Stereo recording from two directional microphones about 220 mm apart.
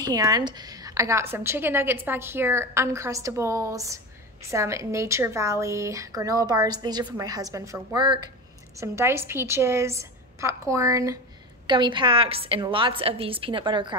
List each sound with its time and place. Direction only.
0.0 s a woman's voice: 15° right (ahead or behind)